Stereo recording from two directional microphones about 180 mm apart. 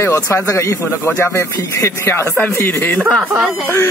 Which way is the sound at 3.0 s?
5° right (ahead or behind).